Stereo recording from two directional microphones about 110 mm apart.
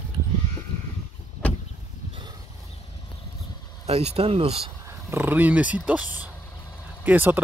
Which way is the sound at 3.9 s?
65° right (ahead or behind).